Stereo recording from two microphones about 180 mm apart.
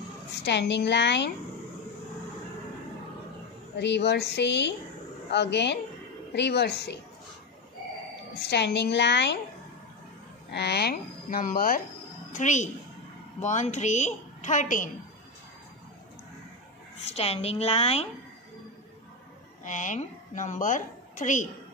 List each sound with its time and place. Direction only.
0.5 s a woman's voice: 70° left (ahead or behind)
3.7 s a woman's voice: 70° left (ahead or behind)
8.4 s a woman's voice: 70° left (ahead or behind)
10.5 s a woman's voice: 65° left (ahead or behind); by 14.9 s 45° left (ahead or behind)
17.0 s a woman's voice: 35° left (ahead or behind)
19.6 s a woman's voice: 45° left (ahead or behind)